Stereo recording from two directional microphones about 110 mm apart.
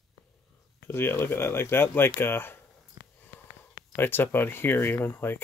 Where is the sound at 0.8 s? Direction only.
20° left (ahead or behind).